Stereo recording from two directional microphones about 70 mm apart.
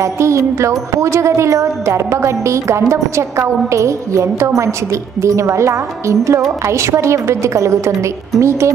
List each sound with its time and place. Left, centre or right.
0.0 s speech: right